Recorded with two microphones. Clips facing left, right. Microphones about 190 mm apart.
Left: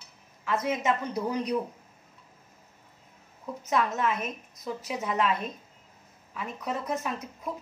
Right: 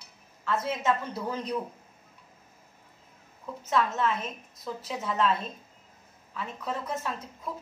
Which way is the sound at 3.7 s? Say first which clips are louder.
Even; 15° left (ahead or behind).